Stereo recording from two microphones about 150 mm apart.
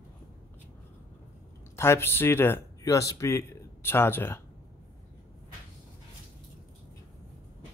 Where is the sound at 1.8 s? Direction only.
15° left (ahead or behind).